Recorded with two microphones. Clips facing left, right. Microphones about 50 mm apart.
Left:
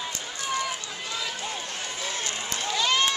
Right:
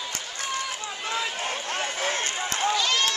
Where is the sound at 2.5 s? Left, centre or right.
Right.